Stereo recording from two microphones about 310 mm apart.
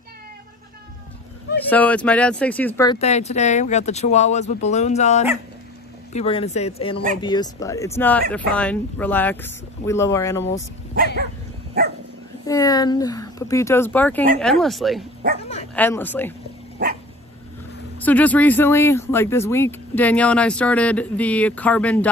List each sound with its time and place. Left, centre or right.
1.6 s speech: centre
11.8 s dog: right
12.4 s speech: centre
18.0 s speech: centre